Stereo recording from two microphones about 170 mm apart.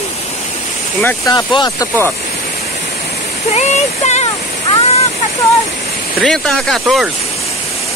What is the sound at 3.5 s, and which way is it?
Speech, 40° left (ahead or behind).